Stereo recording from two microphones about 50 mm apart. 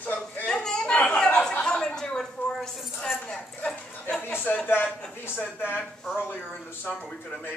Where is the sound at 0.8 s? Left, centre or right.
Left.